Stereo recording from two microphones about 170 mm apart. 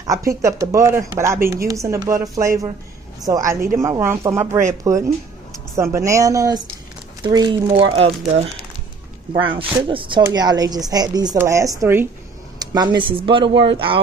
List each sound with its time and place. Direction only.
0.3 s a woman's voice: 20° right (ahead or behind)